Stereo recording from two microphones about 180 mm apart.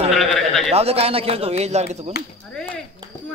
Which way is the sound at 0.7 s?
35° right (ahead or behind).